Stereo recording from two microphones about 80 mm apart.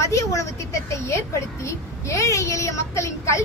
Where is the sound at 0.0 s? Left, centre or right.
Left.